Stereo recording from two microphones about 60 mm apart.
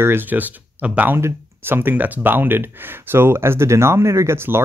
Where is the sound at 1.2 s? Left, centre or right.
Right.